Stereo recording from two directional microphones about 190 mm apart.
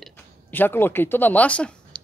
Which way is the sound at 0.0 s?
10° left (ahead or behind).